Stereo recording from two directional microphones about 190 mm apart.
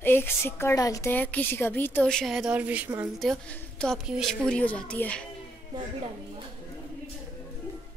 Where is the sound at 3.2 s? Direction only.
5° left (ahead or behind).